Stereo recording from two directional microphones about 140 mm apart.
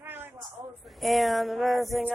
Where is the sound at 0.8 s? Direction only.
Centre (ahead or behind).